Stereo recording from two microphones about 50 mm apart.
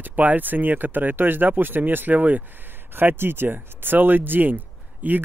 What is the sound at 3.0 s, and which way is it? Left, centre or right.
Speech, right.